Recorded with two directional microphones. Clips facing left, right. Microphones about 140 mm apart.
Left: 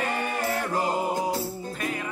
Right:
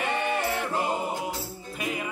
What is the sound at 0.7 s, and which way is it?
Music, 40° left (ahead or behind).